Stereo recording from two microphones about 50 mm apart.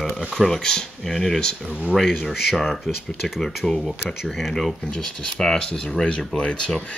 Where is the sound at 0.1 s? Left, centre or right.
Centre.